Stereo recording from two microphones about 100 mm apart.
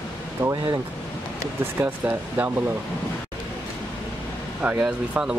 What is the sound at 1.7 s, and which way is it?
Speech, 15° right (ahead or behind).